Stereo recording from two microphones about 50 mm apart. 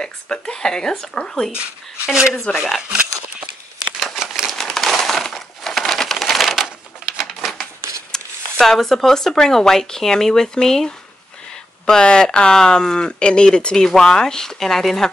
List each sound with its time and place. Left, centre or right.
0.0 s speech: centre
1.5 s speech: centre
3.8 s crumpling: centre
4.6 s crushing: centre
8.1 s speech: centre